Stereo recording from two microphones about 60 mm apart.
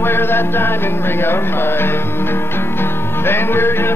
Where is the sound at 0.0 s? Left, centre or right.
Left.